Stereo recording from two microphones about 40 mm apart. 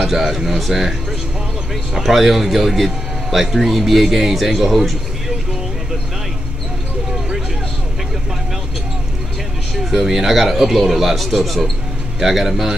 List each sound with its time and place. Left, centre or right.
0.0 s a man's voice: centre
2.0 s a man's voice: centre
9.8 s a man's voice: centre